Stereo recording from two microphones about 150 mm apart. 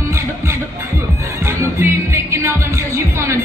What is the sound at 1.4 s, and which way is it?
Music, 20° right (ahead or behind).